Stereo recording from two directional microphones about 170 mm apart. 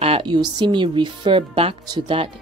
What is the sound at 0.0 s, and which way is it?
Speech, 30° right (ahead or behind).